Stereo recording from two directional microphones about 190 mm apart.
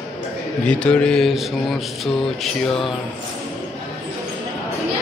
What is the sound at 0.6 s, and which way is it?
Speech, 5° left (ahead or behind).